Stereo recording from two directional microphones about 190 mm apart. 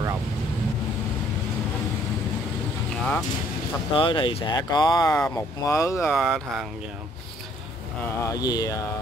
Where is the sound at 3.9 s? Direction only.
25° left (ahead or behind).